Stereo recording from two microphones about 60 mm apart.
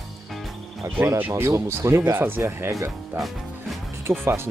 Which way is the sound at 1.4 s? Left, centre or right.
Right.